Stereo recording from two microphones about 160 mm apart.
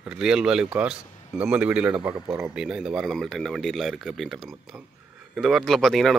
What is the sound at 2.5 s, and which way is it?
Speech, 5° right (ahead or behind).